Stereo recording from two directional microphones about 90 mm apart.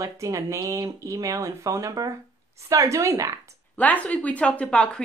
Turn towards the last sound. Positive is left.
turn(degrees=15)  # may be behind; listen again after turning